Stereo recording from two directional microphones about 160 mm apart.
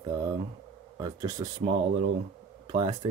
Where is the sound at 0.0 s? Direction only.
25° right (ahead or behind).